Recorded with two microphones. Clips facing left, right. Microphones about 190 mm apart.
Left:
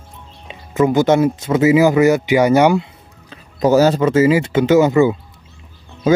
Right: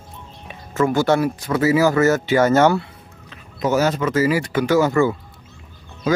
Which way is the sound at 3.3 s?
35° left (ahead or behind).